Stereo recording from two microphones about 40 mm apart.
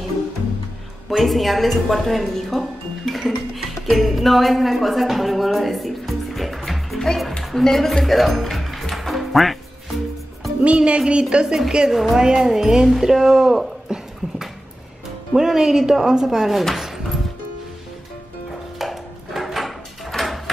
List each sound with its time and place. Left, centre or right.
1.1 s a woman's voice: centre
3.1 s music: centre
7.5 s speech: centre
8.9 s music: centre
10.6 s a sound: right
11.4 s speech: centre
15.3 s speech: centre
18.8 s a sound: centre